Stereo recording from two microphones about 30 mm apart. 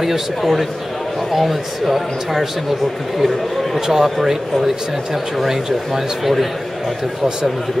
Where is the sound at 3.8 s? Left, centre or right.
Centre.